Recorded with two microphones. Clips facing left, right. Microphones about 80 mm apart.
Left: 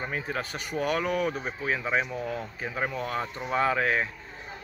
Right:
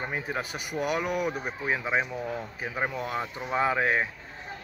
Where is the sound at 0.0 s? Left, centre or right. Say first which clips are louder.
Even; centre.